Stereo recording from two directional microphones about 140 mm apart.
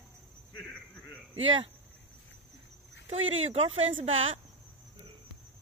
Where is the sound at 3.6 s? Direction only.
45° right (ahead or behind).